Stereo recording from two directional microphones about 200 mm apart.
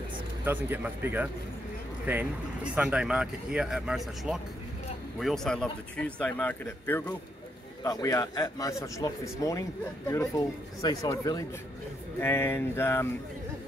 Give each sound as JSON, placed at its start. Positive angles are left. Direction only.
{"t": 0.5, "sound": "a man's voice", "side_deg": -10}